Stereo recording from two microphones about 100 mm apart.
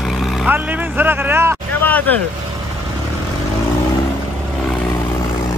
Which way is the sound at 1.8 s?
15° left (ahead or behind).